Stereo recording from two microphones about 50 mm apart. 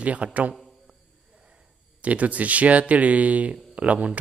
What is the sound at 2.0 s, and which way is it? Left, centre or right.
Speech, right.